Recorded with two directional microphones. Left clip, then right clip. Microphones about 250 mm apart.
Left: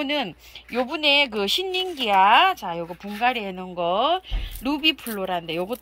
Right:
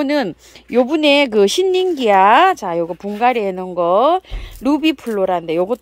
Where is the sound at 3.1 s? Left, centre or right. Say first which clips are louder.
Right 8 dB; right.